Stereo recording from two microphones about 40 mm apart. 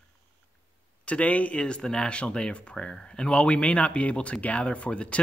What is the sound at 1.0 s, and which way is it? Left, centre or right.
Speech, left.